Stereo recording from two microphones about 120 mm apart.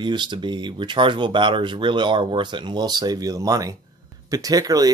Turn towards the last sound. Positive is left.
turn(degrees=-30)  # may be behind; listen again after turning